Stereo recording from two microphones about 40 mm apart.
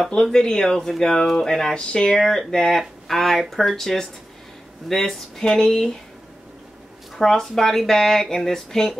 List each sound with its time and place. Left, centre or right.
0.1 s speech: centre
2.1 s speech: centre
7.2 s speech: centre